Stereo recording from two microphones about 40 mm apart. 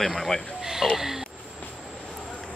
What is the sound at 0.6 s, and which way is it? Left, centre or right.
Speech, centre.